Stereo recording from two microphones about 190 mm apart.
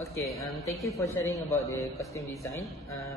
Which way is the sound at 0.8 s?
15° left (ahead or behind).